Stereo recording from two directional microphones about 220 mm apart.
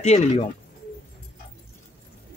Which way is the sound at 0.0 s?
30° left (ahead or behind).